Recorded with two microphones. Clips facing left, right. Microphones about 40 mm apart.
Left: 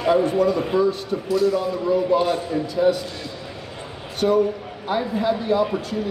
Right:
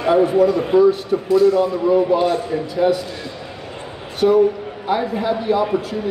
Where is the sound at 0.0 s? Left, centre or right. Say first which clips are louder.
Right 4 dB; centre.